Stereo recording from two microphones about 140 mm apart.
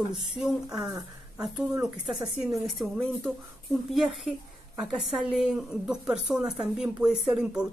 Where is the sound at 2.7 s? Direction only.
Centre (ahead or behind).